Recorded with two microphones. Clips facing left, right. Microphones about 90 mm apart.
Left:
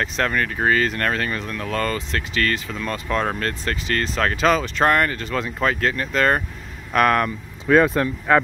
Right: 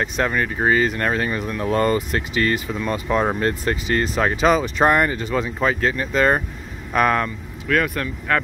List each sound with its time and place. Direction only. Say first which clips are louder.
0.0 s speech: right 1 dB; 5° right (ahead or behind)
7.6 s speech: left 5 dB; 25° left (ahead or behind)